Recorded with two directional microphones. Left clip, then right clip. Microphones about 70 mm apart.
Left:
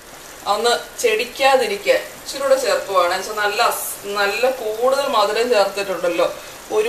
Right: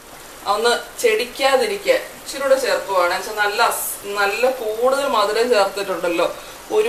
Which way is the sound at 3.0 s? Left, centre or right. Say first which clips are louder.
Even; centre.